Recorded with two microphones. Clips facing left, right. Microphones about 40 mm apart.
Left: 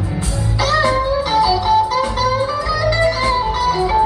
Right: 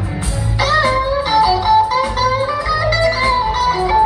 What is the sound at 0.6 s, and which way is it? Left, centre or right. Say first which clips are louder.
Music: right 1 dB; centre.